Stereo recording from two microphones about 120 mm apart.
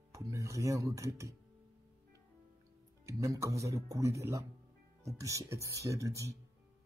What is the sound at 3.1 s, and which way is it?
Speech, 25° right (ahead or behind).